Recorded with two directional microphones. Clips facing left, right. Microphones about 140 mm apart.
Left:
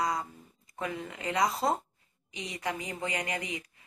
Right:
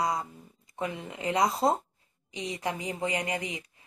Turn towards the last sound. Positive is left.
turn(degrees=-30)  # may be behind; listen again after turning